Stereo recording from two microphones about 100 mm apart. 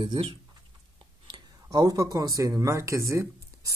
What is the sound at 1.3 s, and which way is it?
Speech, 40° right (ahead or behind).